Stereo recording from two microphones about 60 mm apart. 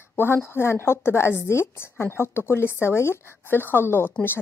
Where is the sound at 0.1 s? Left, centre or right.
Left.